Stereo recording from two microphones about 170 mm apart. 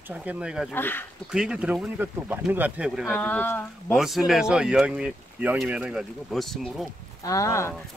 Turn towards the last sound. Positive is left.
turn(degrees=15)  # may be behind; listen again after turning